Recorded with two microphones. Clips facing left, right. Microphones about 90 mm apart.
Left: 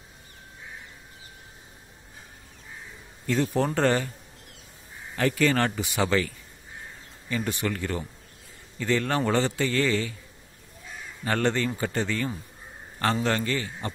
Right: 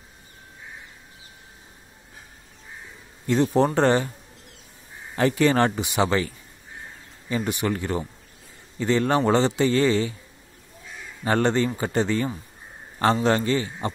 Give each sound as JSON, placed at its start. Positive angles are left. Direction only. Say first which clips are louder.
{"t": 3.3, "sound": "a man's voice", "louder": "right 5 dB", "side_deg": -20}
{"t": 5.1, "sound": "a man's voice", "louder": "right 4 dB", "side_deg": -20}
{"t": 11.2, "sound": "a man's voice", "louder": "right 4 dB", "side_deg": -20}